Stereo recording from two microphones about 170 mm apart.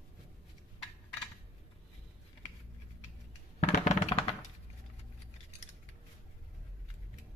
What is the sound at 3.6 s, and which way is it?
Music, 35° left (ahead or behind).